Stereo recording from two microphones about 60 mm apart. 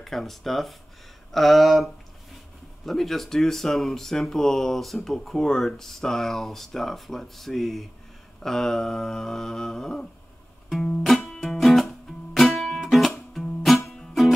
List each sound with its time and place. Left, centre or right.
0.0 s speech: centre
8.4 s humming: centre
10.7 s music: centre
11.0 s music: centre